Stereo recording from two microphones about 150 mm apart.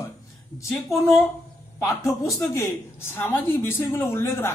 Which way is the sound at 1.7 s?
20° left (ahead or behind).